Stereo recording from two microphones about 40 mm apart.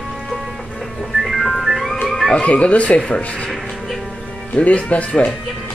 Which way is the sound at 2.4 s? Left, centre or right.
Left.